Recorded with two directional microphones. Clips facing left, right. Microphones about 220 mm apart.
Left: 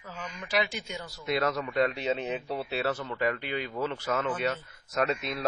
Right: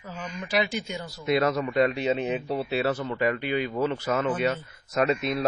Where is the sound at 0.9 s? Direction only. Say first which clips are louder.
Right 5 dB; 15° right (ahead or behind).